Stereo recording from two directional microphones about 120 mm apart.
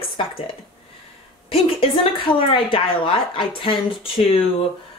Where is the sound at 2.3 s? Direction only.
50° left (ahead or behind).